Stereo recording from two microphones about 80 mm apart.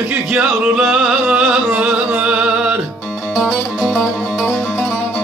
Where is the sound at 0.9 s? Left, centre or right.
Centre.